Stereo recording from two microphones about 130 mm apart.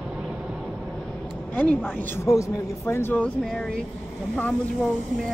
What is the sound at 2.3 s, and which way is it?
A man's voice, 20° left (ahead or behind).